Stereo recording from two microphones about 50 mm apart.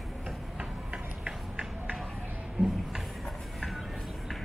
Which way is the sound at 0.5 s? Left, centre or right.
Centre.